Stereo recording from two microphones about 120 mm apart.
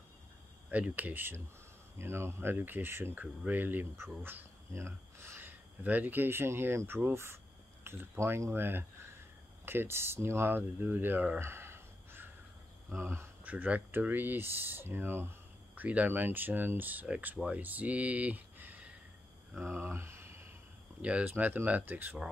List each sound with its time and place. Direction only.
0.7 s speech: 10° right (ahead or behind)